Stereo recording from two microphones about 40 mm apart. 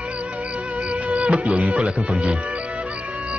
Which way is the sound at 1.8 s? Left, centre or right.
Right.